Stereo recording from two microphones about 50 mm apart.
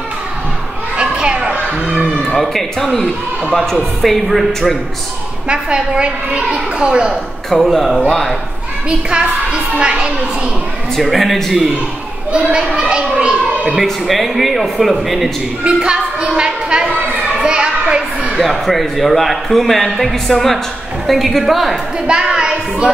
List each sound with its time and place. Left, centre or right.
0.9 s children playing: centre
2.1 s a man's voice: centre
5.5 s a child's voice: right
7.4 s a man's voice: centre
8.8 s a child's voice: centre
11.0 s a man's voice: centre
12.3 s a child's voice: centre
13.7 s a man's voice: centre
15.6 s a child's voice: centre
17.3 s a sound: centre
18.4 s a man's voice: centre
22.0 s speech: centre